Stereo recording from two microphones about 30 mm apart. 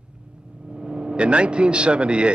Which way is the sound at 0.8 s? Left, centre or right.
Right.